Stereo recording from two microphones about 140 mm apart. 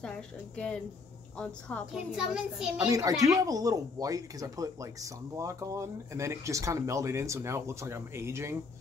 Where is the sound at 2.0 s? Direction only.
5° right (ahead or behind).